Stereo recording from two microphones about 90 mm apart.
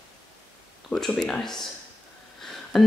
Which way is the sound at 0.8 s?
5° left (ahead or behind).